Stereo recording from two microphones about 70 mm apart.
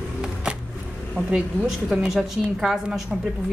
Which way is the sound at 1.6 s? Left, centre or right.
Centre.